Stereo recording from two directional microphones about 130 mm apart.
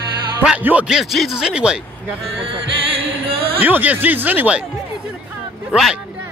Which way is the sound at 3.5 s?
15° right (ahead or behind).